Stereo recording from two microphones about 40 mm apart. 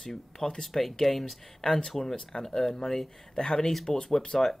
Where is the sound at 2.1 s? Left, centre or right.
Centre.